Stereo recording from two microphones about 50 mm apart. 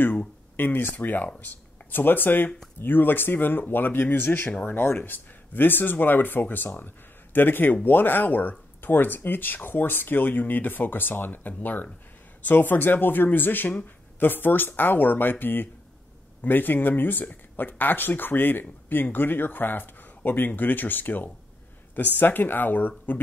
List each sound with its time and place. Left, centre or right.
0.6 s speech: left